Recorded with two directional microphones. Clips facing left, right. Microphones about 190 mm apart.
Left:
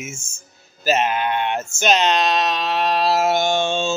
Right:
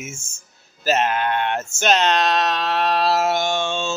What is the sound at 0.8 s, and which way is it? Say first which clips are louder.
Male singing: even; 5° left (ahead or behind).